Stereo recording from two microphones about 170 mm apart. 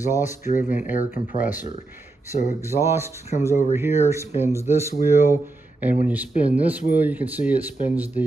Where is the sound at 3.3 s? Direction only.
45° left (ahead or behind).